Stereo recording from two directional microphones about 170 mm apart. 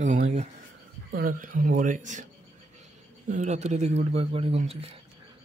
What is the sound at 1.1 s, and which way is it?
Speech, 55° right (ahead or behind).